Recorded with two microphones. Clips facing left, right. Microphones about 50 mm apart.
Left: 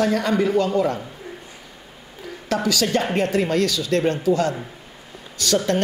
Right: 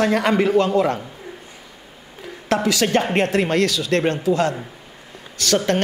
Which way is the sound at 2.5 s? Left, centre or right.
Right.